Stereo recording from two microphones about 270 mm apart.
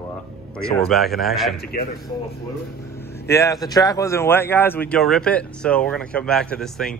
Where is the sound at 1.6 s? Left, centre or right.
Left.